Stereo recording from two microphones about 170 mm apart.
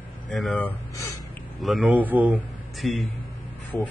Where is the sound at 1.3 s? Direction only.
Centre (ahead or behind).